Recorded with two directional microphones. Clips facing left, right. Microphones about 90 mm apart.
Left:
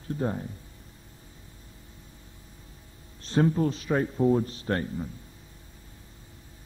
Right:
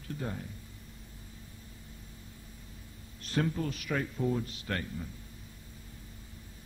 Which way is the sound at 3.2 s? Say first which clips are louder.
Left 8 dB; 30° left (ahead or behind).